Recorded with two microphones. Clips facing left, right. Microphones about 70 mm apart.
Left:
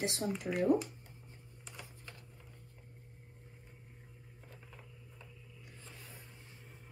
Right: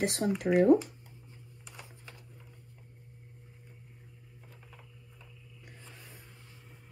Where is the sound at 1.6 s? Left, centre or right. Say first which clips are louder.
Right 1 dB; centre.